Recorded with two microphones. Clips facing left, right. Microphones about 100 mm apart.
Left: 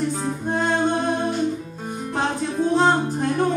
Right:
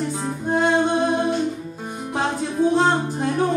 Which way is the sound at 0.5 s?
5° right (ahead or behind).